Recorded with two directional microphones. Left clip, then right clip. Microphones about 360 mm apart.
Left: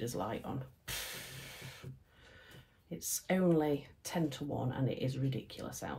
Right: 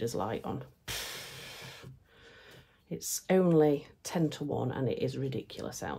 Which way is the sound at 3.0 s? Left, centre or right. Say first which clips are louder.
Right 7 dB; right.